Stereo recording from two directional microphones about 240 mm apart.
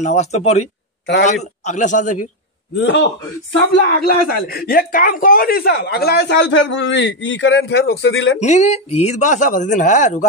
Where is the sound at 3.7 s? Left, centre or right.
Left.